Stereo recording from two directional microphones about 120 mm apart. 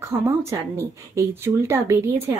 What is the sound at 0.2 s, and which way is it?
Speech, 25° right (ahead or behind).